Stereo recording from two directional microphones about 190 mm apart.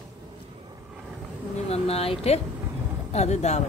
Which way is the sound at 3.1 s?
35° left (ahead or behind).